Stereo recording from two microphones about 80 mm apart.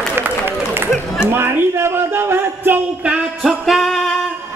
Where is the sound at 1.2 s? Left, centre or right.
Right.